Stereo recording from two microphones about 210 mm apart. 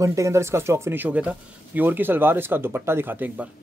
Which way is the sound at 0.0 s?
15° right (ahead or behind).